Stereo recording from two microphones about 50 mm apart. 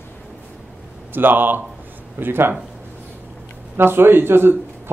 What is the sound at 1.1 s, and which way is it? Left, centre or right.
Speech, right.